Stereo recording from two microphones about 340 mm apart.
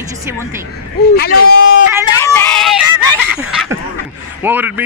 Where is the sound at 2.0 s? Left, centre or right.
Centre.